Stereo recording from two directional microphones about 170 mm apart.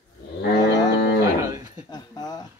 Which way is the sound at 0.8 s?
80° left.